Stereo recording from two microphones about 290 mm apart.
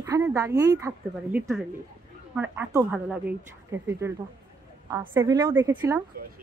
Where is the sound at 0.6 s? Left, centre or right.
Centre.